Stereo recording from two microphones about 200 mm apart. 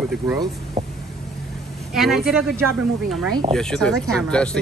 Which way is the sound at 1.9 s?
Centre (ahead or behind).